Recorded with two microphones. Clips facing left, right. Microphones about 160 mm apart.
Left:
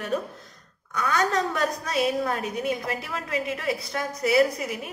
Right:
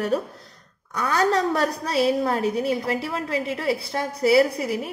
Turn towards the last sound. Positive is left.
turn(degrees=-30)  # may be behind; listen again after turning